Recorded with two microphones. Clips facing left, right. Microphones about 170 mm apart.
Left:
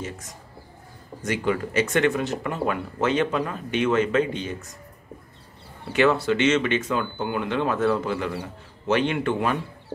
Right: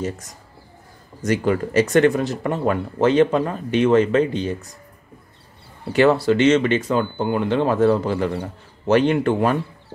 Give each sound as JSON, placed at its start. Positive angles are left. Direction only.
{"t": 1.2, "sound": "speech", "side_deg": -40}
{"t": 5.9, "sound": "speech", "side_deg": -35}